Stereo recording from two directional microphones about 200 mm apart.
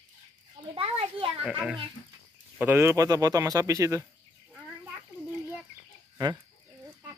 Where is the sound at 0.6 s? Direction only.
25° right (ahead or behind).